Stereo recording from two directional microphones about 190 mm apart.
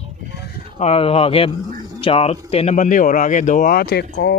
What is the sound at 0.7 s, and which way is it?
Speech, 30° left (ahead or behind).